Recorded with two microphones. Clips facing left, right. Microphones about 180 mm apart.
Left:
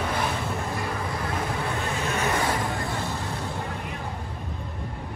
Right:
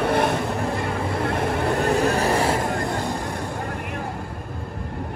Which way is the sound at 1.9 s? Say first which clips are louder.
Right 7 dB; 35° right (ahead or behind).